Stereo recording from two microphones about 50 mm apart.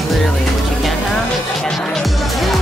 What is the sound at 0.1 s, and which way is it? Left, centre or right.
Music, centre.